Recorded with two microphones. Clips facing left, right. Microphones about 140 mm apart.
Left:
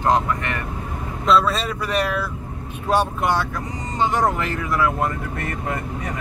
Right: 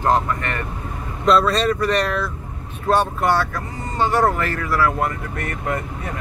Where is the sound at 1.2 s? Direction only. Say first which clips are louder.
Right 2 dB; 5° left (ahead or behind); by 5.1 s 20° left (ahead or behind).